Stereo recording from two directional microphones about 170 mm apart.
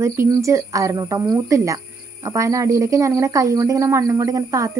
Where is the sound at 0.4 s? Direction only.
20° right (ahead or behind).